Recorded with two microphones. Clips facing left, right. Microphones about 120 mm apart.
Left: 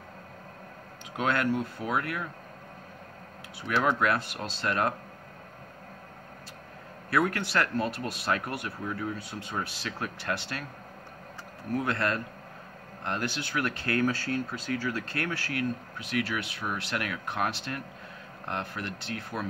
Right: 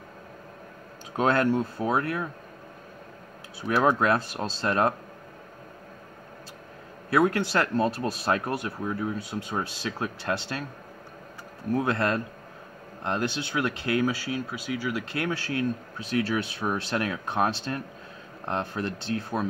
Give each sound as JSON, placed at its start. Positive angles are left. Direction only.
{"t": 1.1, "sound": "speech", "side_deg": -35}
{"t": 3.6, "sound": "speech", "side_deg": -35}
{"t": 7.1, "sound": "speech", "side_deg": -25}
{"t": 11.7, "sound": "speech", "side_deg": -25}